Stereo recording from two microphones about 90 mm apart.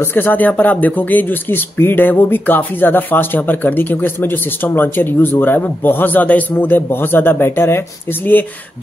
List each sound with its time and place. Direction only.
0.0 s speech: 25° left (ahead or behind)